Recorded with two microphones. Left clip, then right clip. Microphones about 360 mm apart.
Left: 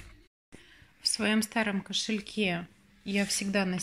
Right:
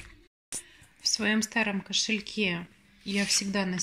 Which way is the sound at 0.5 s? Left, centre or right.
Right.